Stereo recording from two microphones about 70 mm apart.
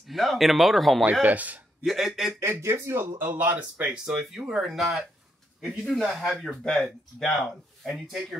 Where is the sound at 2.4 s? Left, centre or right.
Right.